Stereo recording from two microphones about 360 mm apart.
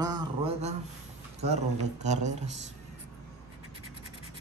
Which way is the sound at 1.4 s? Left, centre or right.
Centre.